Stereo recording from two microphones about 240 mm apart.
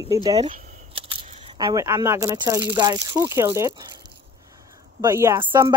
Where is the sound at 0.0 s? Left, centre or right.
Centre.